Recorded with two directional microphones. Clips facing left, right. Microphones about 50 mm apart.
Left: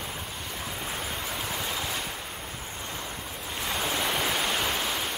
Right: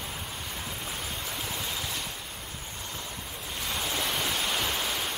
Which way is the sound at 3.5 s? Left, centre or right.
Centre.